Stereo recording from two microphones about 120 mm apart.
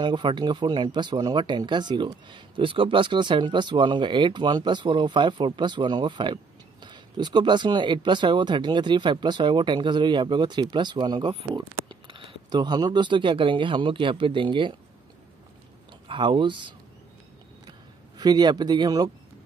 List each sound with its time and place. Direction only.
0.0 s speech: 40° right (ahead or behind)
16.1 s speech: 45° right (ahead or behind)
17.6 s a sound: 35° right (ahead or behind)